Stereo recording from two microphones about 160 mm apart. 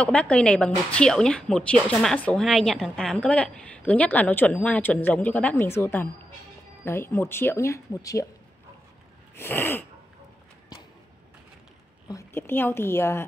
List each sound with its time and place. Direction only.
0.0 s a woman's voice: 5° left (ahead or behind)
9.3 s a woman's voice: 15° left (ahead or behind)
12.1 s a woman's voice: 20° left (ahead or behind)